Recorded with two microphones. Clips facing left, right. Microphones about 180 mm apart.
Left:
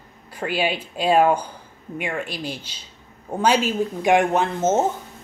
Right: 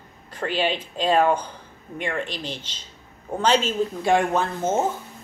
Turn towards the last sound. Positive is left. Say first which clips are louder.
# left 3 dB
turn(degrees=20)  # may be behind; listen again after turning